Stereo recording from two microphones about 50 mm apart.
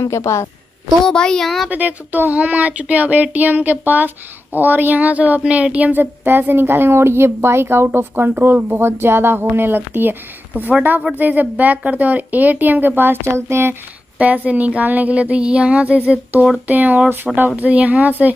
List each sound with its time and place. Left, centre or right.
0.1 s a woman's voice: left
1.0 s a child's voice: centre
1.7 s speech: right
6.2 s a woman's voice: right
14.1 s speech: right
16.6 s speech: right